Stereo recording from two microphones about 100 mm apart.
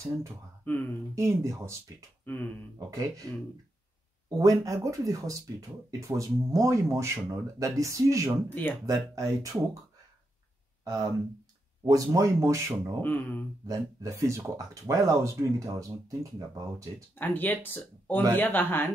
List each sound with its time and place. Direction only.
0.7 s speech: 15° left (ahead or behind)
1.1 s speech: 30° right (ahead or behind)
2.2 s speech: 15° left (ahead or behind)
2.9 s speech: 35° right (ahead or behind)
4.3 s speech: 35° right (ahead or behind)
8.5 s speech: 20° left (ahead or behind)
8.8 s speech: 40° right (ahead or behind)
10.8 s a sound: 40° right (ahead or behind)
11.8 s speech: 35° right (ahead or behind)
13.0 s speech: 20° left (ahead or behind)
13.7 s speech: 30° right (ahead or behind)
17.1 s speech: 20° left (ahead or behind)